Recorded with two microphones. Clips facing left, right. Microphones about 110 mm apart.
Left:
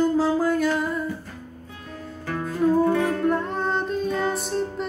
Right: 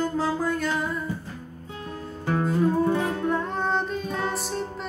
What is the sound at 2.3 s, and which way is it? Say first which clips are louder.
Music: left 1 dB; 25° right (ahead or behind).